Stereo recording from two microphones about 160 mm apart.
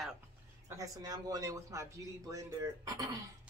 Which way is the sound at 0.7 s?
20° right (ahead or behind).